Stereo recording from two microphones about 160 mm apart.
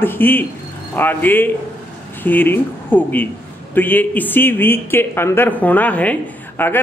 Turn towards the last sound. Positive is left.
turn(degrees=10)  # may be behind; listen again after turning